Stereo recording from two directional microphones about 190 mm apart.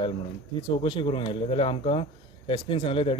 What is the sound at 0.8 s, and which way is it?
Speech, 25° left (ahead or behind).